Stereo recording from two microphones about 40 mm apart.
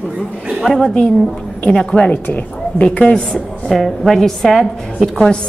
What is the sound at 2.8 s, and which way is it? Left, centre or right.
Speech, left.